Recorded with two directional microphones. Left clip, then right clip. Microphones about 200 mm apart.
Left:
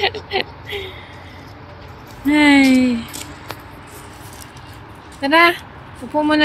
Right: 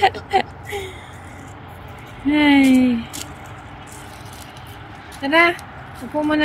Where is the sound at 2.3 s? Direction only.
Centre (ahead or behind).